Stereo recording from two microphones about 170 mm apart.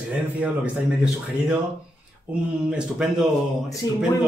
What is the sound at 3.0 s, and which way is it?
Speech, 5° right (ahead or behind).